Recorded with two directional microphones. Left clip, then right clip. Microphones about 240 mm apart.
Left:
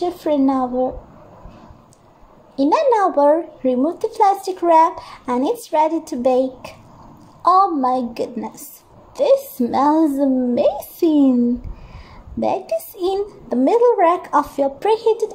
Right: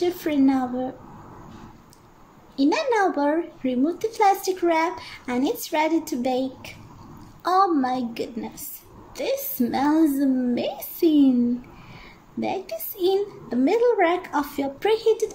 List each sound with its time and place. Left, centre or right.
0.0 s a child's voice: centre
2.5 s a child's voice: centre
12.4 s a child's voice: centre